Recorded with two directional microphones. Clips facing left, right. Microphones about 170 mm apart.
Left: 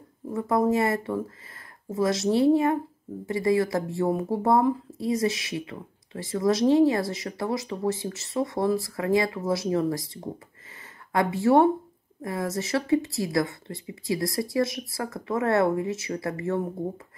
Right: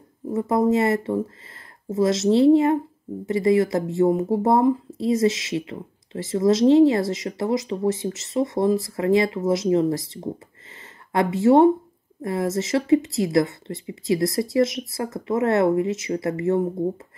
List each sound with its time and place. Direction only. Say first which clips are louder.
0.3 s a woman's voice: right 3 dB; 20° right (ahead or behind)